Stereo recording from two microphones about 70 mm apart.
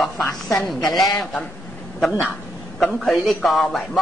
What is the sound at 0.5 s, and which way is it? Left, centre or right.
Speech, centre.